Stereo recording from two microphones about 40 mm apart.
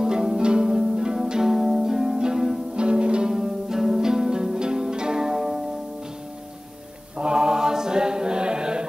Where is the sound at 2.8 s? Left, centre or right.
Right.